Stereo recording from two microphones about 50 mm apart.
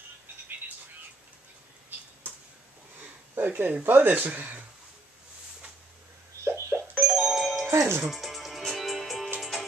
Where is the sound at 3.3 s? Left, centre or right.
Right.